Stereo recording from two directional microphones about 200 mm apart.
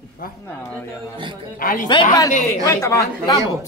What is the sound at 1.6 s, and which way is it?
Speech, 45° left (ahead or behind).